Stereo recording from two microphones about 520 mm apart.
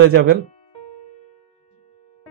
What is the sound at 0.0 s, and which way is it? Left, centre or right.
Music, right.